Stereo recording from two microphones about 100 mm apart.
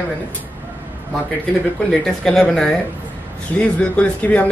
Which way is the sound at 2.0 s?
5° left (ahead or behind).